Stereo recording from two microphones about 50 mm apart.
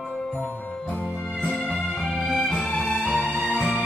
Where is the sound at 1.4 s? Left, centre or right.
Left.